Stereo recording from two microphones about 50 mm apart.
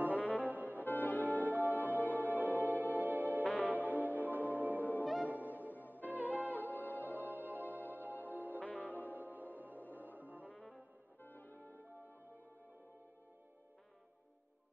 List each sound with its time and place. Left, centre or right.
0.2 s brass instrument: left
0.5 s brass instrument: right
0.8 s music: left
2.4 s music: right
3.4 s music: left
3.7 s music: right
6.7 s music: left
7.1 s music: right
8.5 s music: left
9.2 s music: right
11.2 s music: left